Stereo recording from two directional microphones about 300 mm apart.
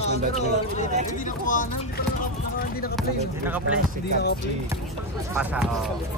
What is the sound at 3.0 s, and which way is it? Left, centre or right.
Speech, centre.